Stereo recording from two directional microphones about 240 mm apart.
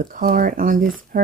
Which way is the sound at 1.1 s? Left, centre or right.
Right.